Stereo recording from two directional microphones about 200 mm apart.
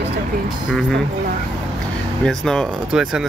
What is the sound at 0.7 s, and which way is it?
Speech, 5° left (ahead or behind).